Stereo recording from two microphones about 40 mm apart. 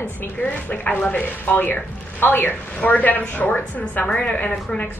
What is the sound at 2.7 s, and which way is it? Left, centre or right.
Speech, left.